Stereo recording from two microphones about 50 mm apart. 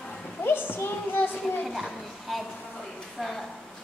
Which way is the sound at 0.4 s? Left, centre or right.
Left.